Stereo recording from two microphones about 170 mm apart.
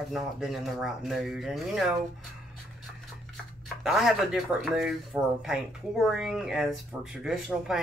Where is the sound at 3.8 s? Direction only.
Centre (ahead or behind).